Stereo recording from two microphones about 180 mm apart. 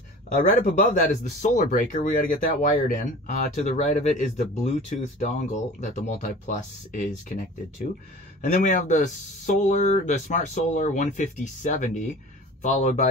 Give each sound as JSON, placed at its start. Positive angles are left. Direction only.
{"t": 0.3, "sound": "speech", "side_deg": 50}
{"t": 8.5, "sound": "speech", "side_deg": 45}